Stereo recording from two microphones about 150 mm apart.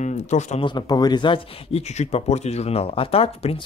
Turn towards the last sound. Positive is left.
turn(degrees=40)  # may be behind; listen again after turning